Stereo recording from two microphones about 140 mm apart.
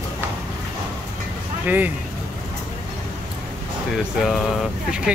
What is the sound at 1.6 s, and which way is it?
Speech, 15° right (ahead or behind).